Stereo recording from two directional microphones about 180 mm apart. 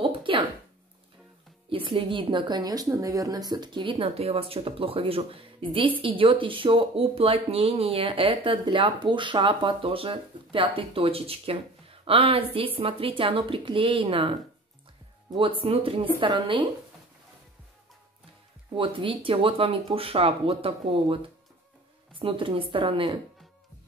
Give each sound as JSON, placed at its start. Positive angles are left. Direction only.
{"t": 0.0, "sound": "a sound", "side_deg": -30}
{"t": 1.7, "sound": "speech", "side_deg": -30}
{"t": 15.3, "sound": "speech", "side_deg": -30}
{"t": 18.8, "sound": "speech", "side_deg": -30}